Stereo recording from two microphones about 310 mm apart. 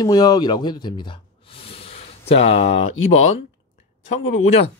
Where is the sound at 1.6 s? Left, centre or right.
Centre.